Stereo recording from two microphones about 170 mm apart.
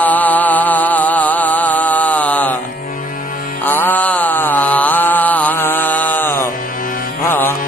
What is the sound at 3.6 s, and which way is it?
Mantra, 10° left (ahead or behind).